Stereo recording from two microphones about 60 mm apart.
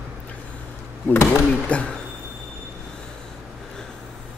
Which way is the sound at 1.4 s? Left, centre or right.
Centre.